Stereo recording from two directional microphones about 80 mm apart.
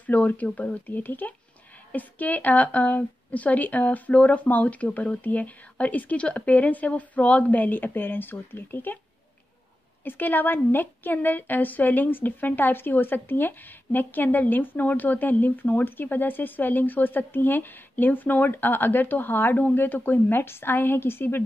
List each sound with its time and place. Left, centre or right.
0.0 s a woman's voice: centre
10.0 s a woman's voice: left